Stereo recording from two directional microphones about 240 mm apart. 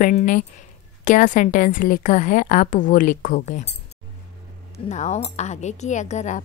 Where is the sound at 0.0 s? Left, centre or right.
Left.